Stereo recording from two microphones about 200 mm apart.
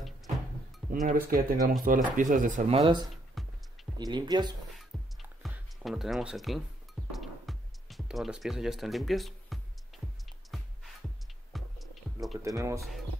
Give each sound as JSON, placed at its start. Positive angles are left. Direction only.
{"t": 1.0, "sound": "speech", "side_deg": -45}
{"t": 2.8, "sound": "speech", "side_deg": -20}
{"t": 3.4, "sound": "music", "side_deg": 0}
{"t": 4.0, "sound": "speech", "side_deg": -20}
{"t": 4.9, "sound": "music", "side_deg": 0}
{"t": 5.4, "sound": "speech", "side_deg": -5}
{"t": 7.2, "sound": "music", "side_deg": 0}
{"t": 11.5, "sound": "music", "side_deg": 0}
{"t": 12.4, "sound": "speech", "side_deg": -15}